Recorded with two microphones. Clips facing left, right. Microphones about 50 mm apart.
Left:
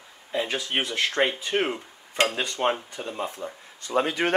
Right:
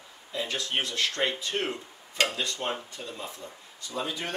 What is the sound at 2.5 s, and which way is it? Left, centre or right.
Cutlery, left.